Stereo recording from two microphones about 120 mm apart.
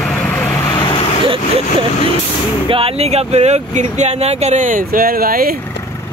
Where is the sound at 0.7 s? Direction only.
40° left (ahead or behind).